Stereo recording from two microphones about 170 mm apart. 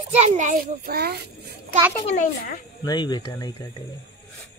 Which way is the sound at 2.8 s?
25° left (ahead or behind).